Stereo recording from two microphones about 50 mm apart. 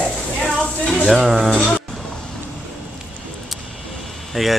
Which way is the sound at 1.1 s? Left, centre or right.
Centre.